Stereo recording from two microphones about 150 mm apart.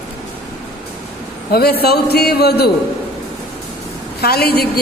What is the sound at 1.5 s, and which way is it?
A man's voice, 90° left.